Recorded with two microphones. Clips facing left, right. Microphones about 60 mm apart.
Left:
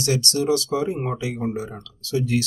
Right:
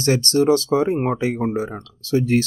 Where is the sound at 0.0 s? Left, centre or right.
Right.